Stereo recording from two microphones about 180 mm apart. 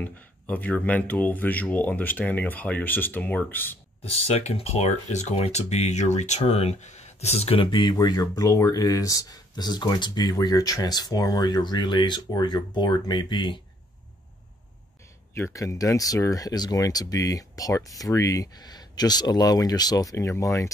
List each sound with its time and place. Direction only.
0.0 s speech: 10° left (ahead or behind)
4.0 s speech: 35° left (ahead or behind)
15.3 s speech: 15° left (ahead or behind)